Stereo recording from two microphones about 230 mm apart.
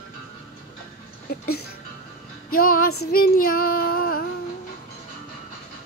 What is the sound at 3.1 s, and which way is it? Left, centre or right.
Child singing, left.